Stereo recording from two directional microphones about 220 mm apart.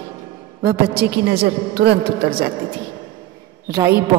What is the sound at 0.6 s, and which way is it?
A woman's voice, 45° right (ahead or behind).